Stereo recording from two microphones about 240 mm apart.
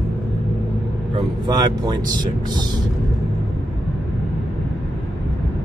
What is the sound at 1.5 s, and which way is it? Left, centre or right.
Speech, centre.